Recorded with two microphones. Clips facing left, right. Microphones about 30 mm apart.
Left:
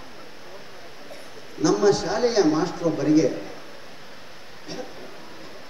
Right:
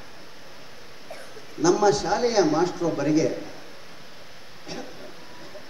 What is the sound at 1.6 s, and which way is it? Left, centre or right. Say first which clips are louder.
A man's voice: even; centre.